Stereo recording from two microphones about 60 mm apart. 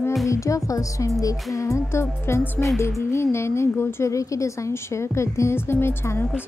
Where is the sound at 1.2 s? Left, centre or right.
Left.